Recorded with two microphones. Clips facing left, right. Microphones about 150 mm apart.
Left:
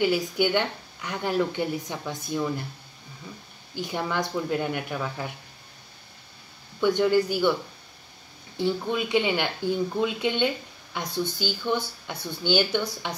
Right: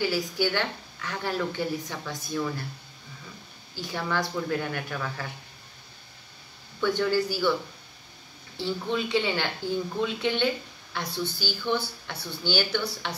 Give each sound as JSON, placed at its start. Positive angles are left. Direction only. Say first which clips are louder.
{"t": 0.0, "sound": "a woman's voice", "louder": "left 3 dB", "side_deg": 20}
{"t": 3.7, "sound": "speech", "louder": "left 2 dB", "side_deg": 20}
{"t": 6.8, "sound": "speech", "louder": "left 4 dB", "side_deg": 20}
{"t": 8.5, "sound": "speech", "louder": "left 3 dB", "side_deg": 15}